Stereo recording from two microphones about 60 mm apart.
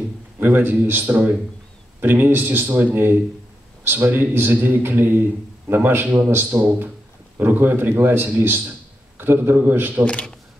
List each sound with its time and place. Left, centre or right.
0.4 s a man's voice: right
6.4 s a man's voice: right
10.0 s speech: centre